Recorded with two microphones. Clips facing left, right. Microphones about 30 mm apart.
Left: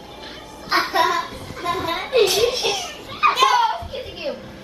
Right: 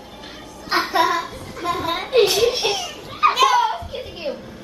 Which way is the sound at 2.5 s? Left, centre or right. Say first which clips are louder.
Right 1 dB; centre.